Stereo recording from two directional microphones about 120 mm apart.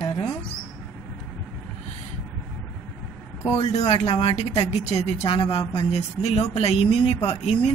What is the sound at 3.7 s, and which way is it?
Speech, 60° left (ahead or behind).